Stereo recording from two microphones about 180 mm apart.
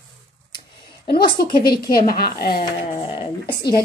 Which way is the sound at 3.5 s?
60° left (ahead or behind).